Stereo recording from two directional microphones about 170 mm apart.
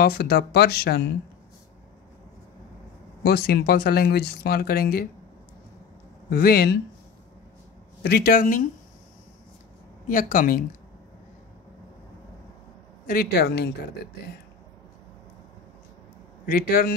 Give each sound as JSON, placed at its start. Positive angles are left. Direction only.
{"t": 0.0, "sound": "speech", "side_deg": 65}
{"t": 3.3, "sound": "speech", "side_deg": 65}
{"t": 6.3, "sound": "speech", "side_deg": 60}
{"t": 8.0, "sound": "speech", "side_deg": 70}
{"t": 10.0, "sound": "speech", "side_deg": 55}
{"t": 13.0, "sound": "speech", "side_deg": 60}
{"t": 16.4, "sound": "speech", "side_deg": 60}